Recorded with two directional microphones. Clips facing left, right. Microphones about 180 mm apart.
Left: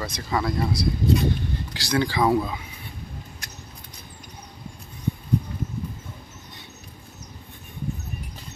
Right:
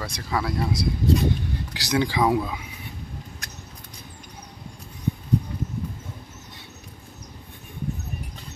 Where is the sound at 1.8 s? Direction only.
15° right (ahead or behind).